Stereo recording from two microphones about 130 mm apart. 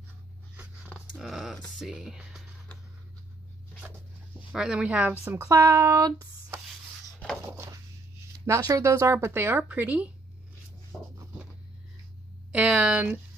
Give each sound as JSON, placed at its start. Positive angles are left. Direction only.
{"t": 0.9, "sound": "music", "side_deg": 0}
{"t": 3.8, "sound": "speech", "side_deg": -10}
{"t": 7.4, "sound": "a sound", "side_deg": -20}
{"t": 8.5, "sound": "speech", "side_deg": -25}
{"t": 12.5, "sound": "speech", "side_deg": -10}